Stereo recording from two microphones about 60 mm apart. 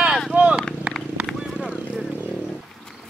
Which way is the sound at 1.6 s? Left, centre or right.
Centre.